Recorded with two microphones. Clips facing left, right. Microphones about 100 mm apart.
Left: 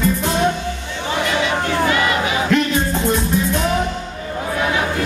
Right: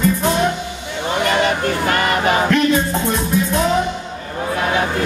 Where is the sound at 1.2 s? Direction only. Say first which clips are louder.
Right 3 dB; 50° right (ahead or behind).